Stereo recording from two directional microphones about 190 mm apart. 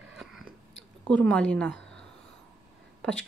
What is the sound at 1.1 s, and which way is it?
Speech, 5° left (ahead or behind).